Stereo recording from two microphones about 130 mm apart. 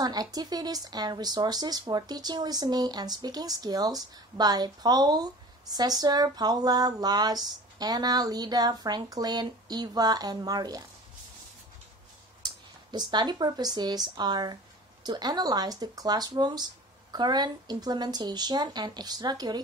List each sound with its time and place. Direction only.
0.0 s speech: 30° right (ahead or behind)
12.4 s speech: 35° right (ahead or behind)